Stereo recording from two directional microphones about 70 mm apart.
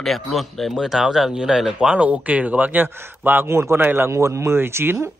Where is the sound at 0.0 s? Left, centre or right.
Centre.